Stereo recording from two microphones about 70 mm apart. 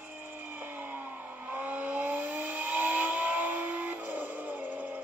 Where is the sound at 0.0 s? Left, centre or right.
Right.